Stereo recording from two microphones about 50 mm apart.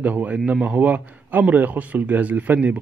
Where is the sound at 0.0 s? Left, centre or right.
Right.